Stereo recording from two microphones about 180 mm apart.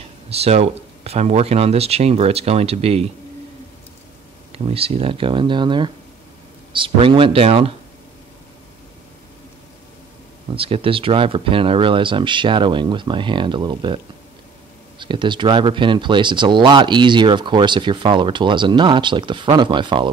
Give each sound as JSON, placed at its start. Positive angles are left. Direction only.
{"t": 0.3, "sound": "speech", "side_deg": -35}
{"t": 4.6, "sound": "speech", "side_deg": -35}
{"t": 10.5, "sound": "speech", "side_deg": -30}